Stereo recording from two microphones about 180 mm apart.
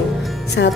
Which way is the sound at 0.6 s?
80° left.